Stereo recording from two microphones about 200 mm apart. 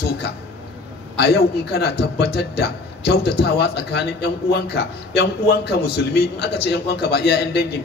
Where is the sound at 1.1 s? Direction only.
55° left (ahead or behind).